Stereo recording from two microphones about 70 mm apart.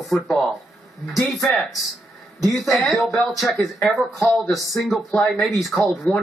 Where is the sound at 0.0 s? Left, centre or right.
Centre.